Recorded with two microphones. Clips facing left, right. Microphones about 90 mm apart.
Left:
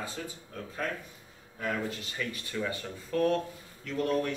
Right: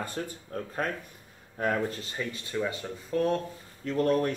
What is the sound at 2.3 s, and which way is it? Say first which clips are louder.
Speech: right 4 dB; 25° right (ahead or behind).